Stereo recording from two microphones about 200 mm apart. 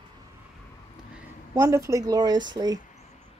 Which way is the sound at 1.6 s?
15° right (ahead or behind).